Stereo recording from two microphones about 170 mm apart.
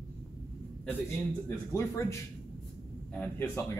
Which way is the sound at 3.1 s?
10° left (ahead or behind).